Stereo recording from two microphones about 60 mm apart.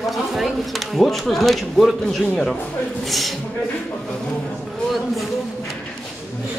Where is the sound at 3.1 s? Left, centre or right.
Centre.